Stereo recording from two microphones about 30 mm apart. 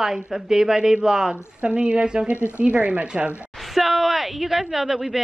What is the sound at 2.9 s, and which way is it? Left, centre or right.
Speech, right.